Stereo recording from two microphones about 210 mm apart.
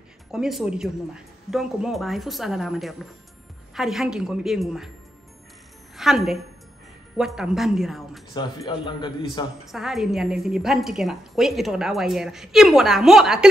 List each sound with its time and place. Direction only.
0.3 s a woman's voice: centre (ahead or behind)
5.9 s a woman's voice: centre (ahead or behind)
8.4 s a man's voice: 20° left (ahead or behind)
9.7 s a woman's voice: centre (ahead or behind)